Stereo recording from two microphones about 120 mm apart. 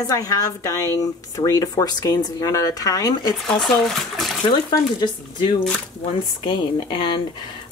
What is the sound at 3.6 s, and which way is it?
Speech, centre (ahead or behind).